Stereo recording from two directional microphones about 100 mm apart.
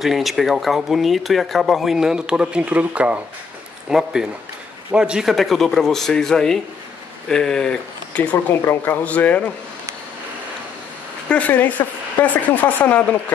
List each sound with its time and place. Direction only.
0.0 s speech: centre (ahead or behind); by 9.4 s 15° left (ahead or behind)
11.2 s speech: 15° left (ahead or behind)